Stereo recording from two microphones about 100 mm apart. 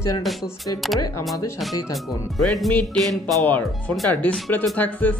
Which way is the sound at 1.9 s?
Centre (ahead or behind).